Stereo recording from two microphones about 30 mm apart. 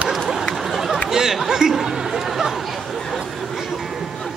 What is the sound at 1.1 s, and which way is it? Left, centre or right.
Chatter, centre.